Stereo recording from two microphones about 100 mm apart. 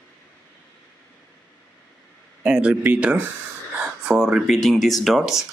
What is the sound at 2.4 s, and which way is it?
Speech, 10° right (ahead or behind).